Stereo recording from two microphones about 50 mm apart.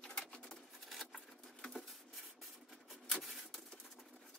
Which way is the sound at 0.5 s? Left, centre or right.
Centre.